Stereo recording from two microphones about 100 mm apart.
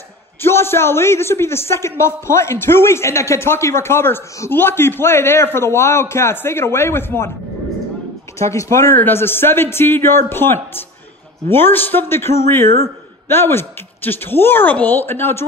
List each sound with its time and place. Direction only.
0.4 s a man's voice: 25° left (ahead or behind)
8.4 s a man's voice: 30° left (ahead or behind)